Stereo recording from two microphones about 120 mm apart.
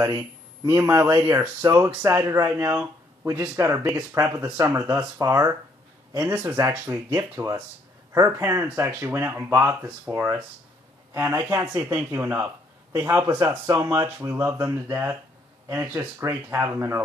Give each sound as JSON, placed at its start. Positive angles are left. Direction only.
{"t": 0.7, "sound": "speech", "side_deg": -20}